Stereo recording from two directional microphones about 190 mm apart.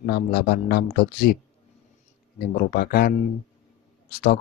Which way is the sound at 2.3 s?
55° left (ahead or behind).